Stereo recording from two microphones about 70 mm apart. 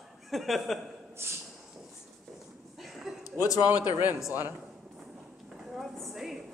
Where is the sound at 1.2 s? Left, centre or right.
Right.